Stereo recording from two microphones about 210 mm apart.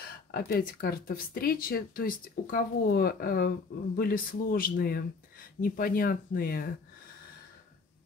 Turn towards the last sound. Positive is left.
turn(degrees=45)  # may be behind; listen again after turning